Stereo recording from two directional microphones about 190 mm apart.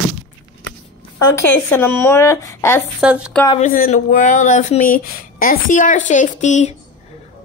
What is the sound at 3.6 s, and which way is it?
Speech, 40° left (ahead or behind).